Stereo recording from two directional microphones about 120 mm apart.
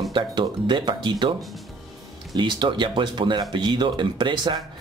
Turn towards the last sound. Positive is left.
turn(degrees=-35)  # may be behind; listen again after turning